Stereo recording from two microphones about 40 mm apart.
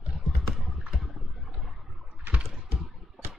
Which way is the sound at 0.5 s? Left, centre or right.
Centre.